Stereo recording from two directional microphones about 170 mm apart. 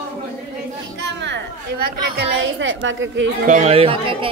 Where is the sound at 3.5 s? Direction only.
40° right (ahead or behind).